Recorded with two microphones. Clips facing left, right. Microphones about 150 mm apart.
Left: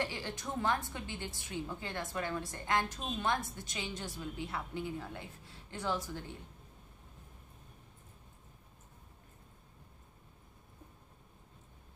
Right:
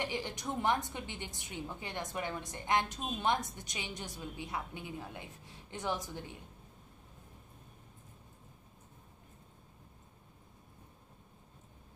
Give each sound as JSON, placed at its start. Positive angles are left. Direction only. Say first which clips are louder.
{"t": 0.0, "sound": "a woman's voice", "louder": "right 1 dB", "side_deg": -15}